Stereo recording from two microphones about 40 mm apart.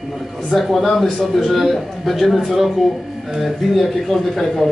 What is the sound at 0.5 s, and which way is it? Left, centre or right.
Speech, centre.